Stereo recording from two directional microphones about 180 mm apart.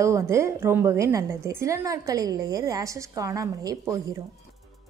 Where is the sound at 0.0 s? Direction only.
15° right (ahead or behind).